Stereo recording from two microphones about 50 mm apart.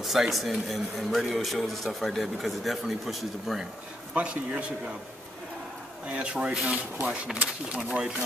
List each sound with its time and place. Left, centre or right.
0.0 s speech: centre
4.1 s speech: right
6.0 s speech: right
6.5 s speech: centre